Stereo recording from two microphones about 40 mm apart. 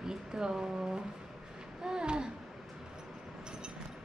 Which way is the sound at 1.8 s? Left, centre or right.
Centre.